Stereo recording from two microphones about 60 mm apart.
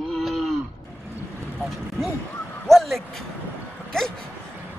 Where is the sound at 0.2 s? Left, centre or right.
Centre.